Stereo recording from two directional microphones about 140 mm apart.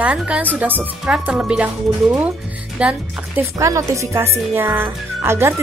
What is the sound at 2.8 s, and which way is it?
Speech, 10° right (ahead or behind).